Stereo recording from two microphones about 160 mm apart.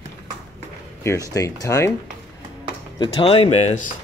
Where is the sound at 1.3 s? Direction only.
20° left (ahead or behind).